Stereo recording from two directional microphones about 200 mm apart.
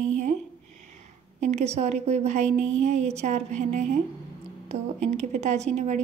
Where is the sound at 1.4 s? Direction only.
35° right (ahead or behind).